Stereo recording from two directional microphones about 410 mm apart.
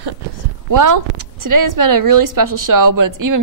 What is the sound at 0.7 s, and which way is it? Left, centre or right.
A woman's voice, right.